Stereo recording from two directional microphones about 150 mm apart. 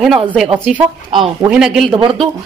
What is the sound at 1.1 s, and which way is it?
Speech, 30° right (ahead or behind).